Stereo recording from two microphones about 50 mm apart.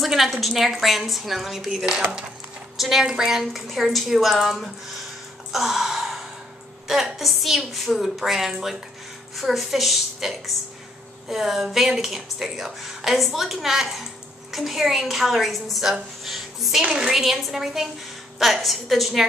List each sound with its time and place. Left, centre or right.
0.0 s a woman's voice: centre
5.5 s gasp: centre
6.9 s a woman's voice: centre
16.8 s a woman's voice: centre
17.2 s a woman's voice: centre